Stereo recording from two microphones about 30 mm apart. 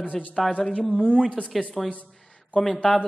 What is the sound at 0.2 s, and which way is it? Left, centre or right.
Speech, centre.